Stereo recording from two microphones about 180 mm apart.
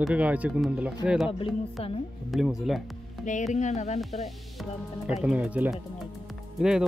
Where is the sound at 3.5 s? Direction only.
40° left (ahead or behind).